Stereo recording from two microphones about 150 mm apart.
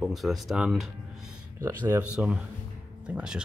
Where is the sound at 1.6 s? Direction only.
15° right (ahead or behind).